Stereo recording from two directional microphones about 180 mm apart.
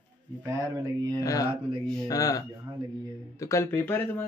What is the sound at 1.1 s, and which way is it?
Speech, 20° left (ahead or behind).